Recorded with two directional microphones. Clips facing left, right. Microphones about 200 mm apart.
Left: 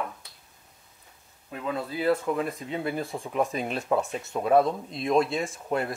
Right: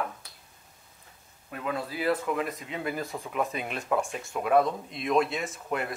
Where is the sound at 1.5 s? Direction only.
25° left (ahead or behind).